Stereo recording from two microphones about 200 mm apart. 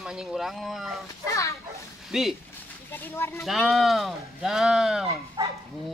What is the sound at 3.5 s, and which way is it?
Speech, centre (ahead or behind).